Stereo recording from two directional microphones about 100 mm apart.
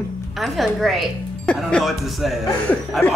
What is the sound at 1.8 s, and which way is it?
Speech, centre (ahead or behind).